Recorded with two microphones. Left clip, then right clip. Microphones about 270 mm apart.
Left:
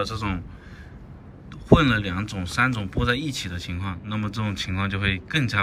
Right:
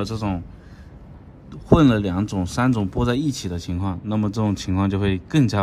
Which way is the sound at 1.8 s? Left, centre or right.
Centre.